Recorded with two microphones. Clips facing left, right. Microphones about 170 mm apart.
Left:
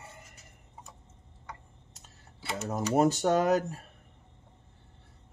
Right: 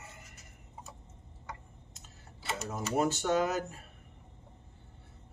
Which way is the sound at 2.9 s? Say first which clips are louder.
Left 4 dB; 40° left (ahead or behind).